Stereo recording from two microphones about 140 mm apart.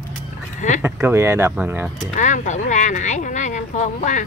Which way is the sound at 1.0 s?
20° right (ahead or behind).